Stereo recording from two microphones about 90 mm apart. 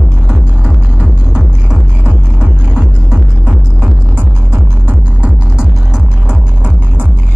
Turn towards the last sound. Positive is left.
turn(degrees=-15)  # may be behind; listen again after turning